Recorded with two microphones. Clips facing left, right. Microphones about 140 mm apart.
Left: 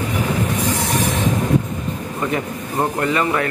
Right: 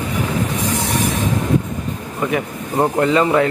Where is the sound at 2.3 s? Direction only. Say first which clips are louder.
Right 2 dB; 15° right (ahead or behind).